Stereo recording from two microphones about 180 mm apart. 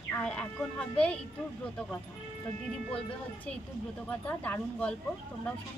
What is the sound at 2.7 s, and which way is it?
Speech, 5° left (ahead or behind).